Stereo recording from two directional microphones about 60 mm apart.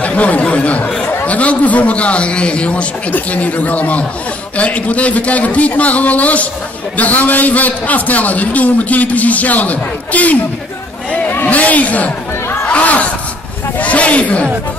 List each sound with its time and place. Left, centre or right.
0.0 s a man's voice: left
11.2 s a sound: left
13.7 s speech: left